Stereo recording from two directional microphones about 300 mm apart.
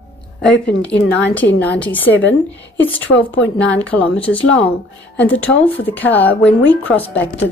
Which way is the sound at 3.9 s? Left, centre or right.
Centre.